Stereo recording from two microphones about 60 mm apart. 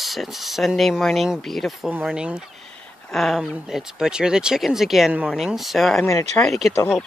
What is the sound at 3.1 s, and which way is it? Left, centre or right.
Speech, centre.